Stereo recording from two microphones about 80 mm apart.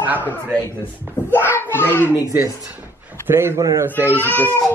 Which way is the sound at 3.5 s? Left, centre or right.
Right.